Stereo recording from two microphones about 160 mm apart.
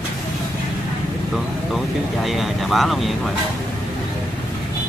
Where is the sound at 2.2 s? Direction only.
Centre (ahead or behind).